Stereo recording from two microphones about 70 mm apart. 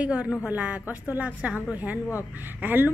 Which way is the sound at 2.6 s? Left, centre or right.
Right.